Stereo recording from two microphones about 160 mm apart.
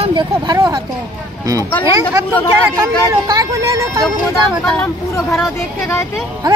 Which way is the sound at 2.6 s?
20° right (ahead or behind).